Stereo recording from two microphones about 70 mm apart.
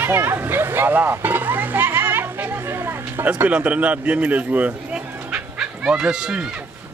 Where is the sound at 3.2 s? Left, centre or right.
Right.